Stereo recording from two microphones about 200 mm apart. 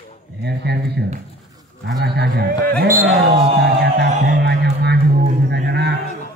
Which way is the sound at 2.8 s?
45° right (ahead or behind).